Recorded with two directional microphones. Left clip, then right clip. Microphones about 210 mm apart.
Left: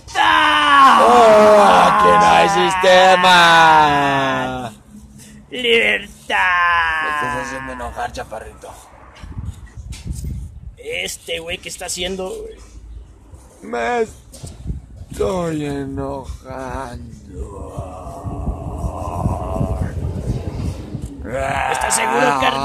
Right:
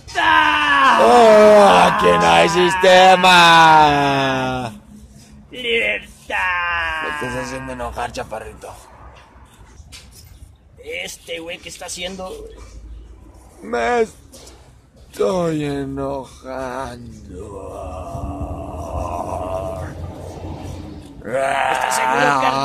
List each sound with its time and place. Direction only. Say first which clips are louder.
0.1 s groan: left 1 dB; 50° left (ahead or behind)
1.0 s music: even; 20° right (ahead or behind)
2.8 s speech: right 1 dB; 15° right (ahead or behind)
5.5 s bleat: left 4 dB; 45° left (ahead or behind)
7.4 s speech: left 1 dB; 20° right (ahead or behind)
10.9 s speech: left 4 dB; 35° left (ahead or behind)
13.7 s speech: right 1 dB; 10° right (ahead or behind)
15.1 s speech: right 2 dB; 10° right (ahead or behind)
18.9 s a sound: right 1 dB; 10° right (ahead or behind)
21.2 s speech: right 2 dB; 10° right (ahead or behind)